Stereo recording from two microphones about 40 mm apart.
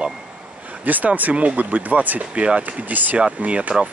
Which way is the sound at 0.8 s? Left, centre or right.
Right.